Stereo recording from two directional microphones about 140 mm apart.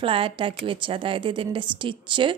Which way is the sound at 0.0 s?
40° right (ahead or behind).